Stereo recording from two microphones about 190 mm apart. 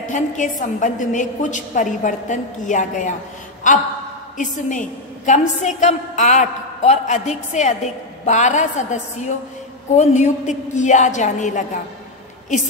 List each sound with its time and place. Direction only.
0.0 s a woman's voice: 40° left (ahead or behind)
4.4 s a woman's voice: 40° left (ahead or behind)